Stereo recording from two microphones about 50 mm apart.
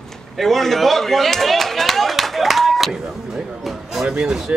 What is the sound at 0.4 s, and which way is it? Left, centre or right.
Speech, centre.